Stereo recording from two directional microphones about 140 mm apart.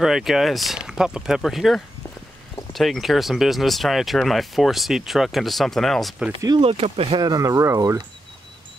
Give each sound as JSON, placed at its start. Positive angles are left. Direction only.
{"t": 0.0, "sound": "speech", "side_deg": -5}
{"t": 6.6, "sound": "speech", "side_deg": -45}
{"t": 7.2, "sound": "speech", "side_deg": -25}